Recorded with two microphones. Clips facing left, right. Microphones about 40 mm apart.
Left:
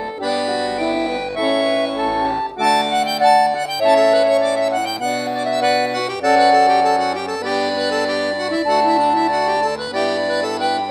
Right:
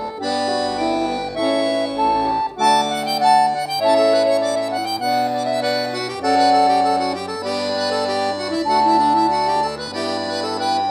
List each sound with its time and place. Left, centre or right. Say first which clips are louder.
1.4 s accordion: left 2 dB; left
2.6 s music: left 1 dB; left
6.2 s accordion: left 2 dB; left
10.6 s music: even; left